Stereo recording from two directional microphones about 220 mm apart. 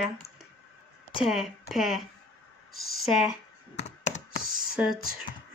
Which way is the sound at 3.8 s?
30° left (ahead or behind).